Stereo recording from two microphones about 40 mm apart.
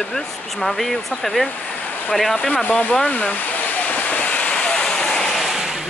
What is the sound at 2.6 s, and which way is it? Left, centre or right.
Speech, left.